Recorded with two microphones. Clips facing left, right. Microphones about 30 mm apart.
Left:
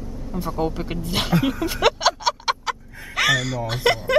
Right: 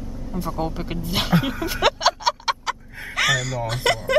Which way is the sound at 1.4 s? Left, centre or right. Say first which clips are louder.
Left 1 dB; centre.